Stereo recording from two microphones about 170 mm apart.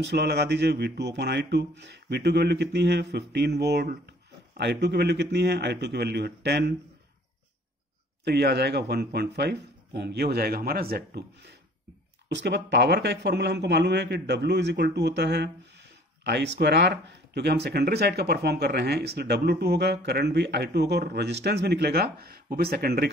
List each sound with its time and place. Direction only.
0.1 s speech: 75° right (ahead or behind)
8.2 s speech: 75° right (ahead or behind)
12.3 s a man's voice: 85° right; by 23.0 s 65° right (ahead or behind)